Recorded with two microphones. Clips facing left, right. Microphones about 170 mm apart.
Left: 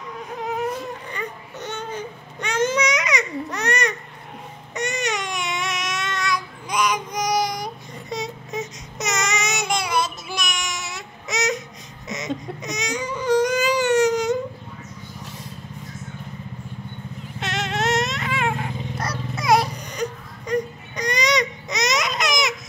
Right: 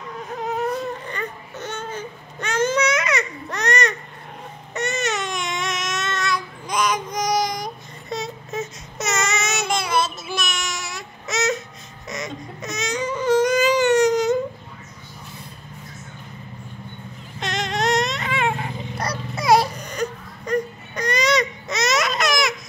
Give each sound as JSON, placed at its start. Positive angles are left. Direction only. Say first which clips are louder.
{"t": 1.0, "sound": "baby cry", "louder": "right 1 dB", "side_deg": 15}
{"t": 17.4, "sound": "vehicle", "louder": "right 1 dB", "side_deg": 5}
{"t": 19.8, "sound": "baby cry", "louder": "right 1 dB", "side_deg": 15}